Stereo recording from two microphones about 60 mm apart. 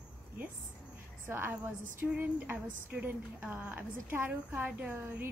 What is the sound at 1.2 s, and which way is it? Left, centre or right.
A woman's voice, right.